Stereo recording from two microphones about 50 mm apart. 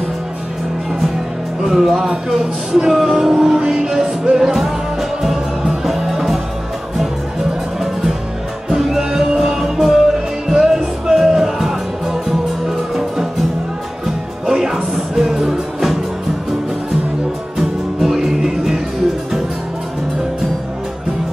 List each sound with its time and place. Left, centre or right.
1.6 s music: centre
7.8 s music: centre
17.6 s music: centre